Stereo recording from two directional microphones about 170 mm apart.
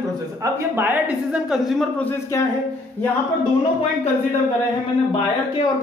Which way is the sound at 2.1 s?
15° left (ahead or behind).